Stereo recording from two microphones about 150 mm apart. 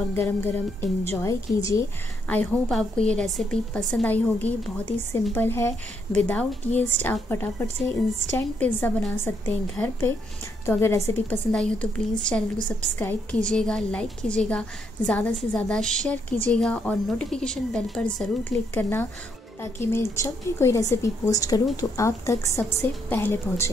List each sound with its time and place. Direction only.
0.1 s a woman's voice: 15° left (ahead or behind)
2.2 s a woman's voice: 10° left (ahead or behind)
11.2 s a woman's voice: 10° left (ahead or behind)